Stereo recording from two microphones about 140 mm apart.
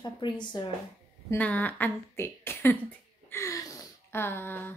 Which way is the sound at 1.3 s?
10° left (ahead or behind).